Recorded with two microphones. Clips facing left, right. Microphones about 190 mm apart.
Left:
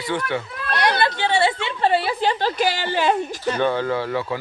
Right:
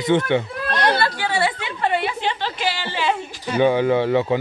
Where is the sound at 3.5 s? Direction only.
15° right (ahead or behind).